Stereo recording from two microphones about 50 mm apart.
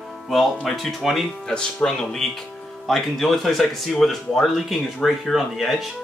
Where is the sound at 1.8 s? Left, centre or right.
Left.